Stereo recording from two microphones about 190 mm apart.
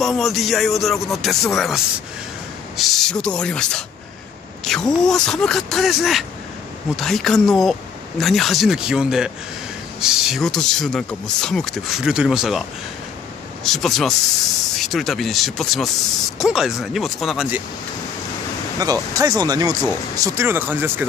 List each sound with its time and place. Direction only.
0.0 s speech: centre (ahead or behind)
2.8 s speech: centre (ahead or behind)
13.7 s speech: centre (ahead or behind)
18.8 s speech: 20° right (ahead or behind)